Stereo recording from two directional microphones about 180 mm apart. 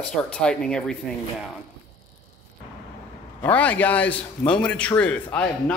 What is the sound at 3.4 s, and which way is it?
A man's voice, 10° left (ahead or behind).